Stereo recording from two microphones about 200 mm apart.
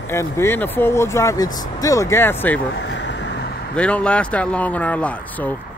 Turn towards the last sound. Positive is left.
turn(degrees=10)  # may be behind; listen again after turning